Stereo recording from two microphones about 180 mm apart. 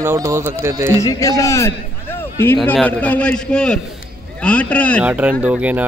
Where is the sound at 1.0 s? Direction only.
20° left (ahead or behind).